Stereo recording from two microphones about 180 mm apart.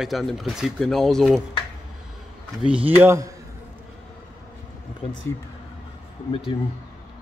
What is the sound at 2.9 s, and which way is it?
Speech, 15° right (ahead or behind).